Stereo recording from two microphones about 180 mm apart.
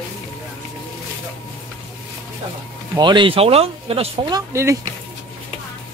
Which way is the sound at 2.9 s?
25° right (ahead or behind).